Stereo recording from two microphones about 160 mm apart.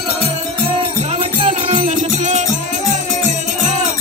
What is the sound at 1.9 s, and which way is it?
Music, 50° right (ahead or behind).